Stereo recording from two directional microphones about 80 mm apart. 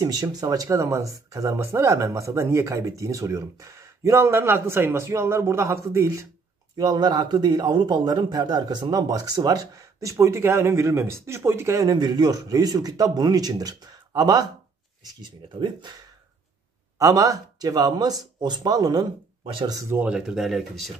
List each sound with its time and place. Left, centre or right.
0.0 s a man's voice: right
1.6 s speech: right
6.8 s a man's voice: right
11.8 s a man's voice: right
15.6 s a man's voice: right
17.0 s a man's voice: right
19.4 s speech: right
20.0 s speech: centre